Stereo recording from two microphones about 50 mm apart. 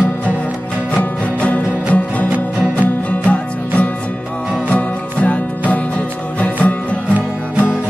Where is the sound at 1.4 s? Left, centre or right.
Left.